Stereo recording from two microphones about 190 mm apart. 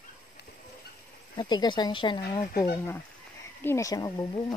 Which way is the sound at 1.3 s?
20° left (ahead or behind).